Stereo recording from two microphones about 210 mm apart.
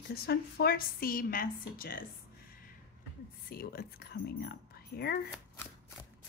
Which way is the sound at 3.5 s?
45° left (ahead or behind).